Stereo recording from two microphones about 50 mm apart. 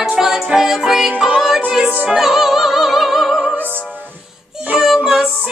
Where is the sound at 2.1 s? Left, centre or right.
Centre.